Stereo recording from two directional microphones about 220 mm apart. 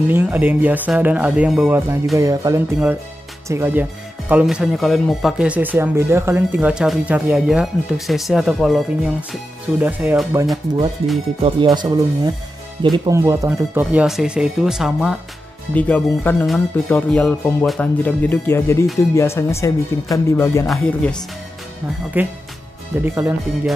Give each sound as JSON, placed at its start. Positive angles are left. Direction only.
{"t": 0.1, "sound": "speech", "side_deg": -10}
{"t": 11.4, "sound": "speech", "side_deg": -20}
{"t": 20.6, "sound": "speech", "side_deg": 5}
{"t": 22.2, "sound": "speech", "side_deg": -10}